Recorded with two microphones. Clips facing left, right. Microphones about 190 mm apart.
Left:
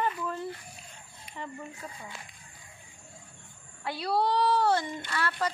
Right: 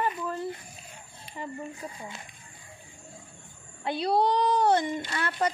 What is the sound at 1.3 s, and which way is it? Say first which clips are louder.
Speech: right 3 dB; 15° right (ahead or behind).